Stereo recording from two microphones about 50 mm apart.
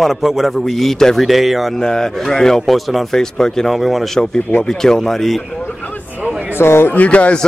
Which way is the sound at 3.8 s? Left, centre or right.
Centre.